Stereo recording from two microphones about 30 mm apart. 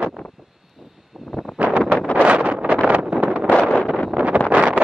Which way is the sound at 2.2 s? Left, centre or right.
Right.